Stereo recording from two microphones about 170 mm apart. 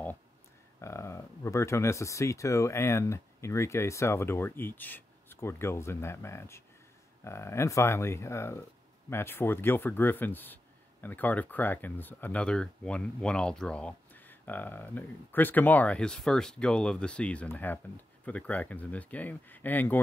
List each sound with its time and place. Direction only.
0.7 s speech: 15° left (ahead or behind)